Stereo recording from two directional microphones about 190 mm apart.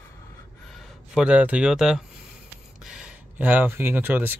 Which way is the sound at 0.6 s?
Centre (ahead or behind).